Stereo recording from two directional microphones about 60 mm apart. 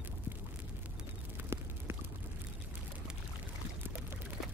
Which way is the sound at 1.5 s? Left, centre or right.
Right.